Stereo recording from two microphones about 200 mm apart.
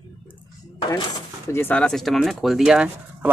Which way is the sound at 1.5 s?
5° left (ahead or behind).